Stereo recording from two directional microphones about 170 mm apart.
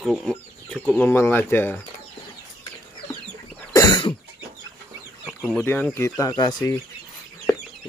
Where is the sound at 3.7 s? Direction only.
25° left (ahead or behind).